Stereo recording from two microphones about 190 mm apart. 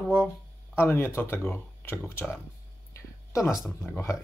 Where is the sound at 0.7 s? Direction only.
10° left (ahead or behind).